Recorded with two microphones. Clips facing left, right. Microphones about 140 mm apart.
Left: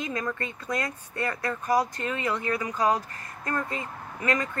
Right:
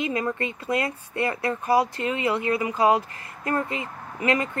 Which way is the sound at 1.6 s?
5° right (ahead or behind).